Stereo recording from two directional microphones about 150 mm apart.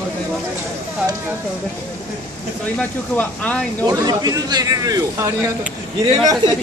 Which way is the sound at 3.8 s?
25° right (ahead or behind).